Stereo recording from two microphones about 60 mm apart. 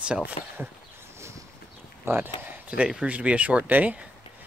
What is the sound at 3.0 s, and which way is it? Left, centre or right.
Speech, right.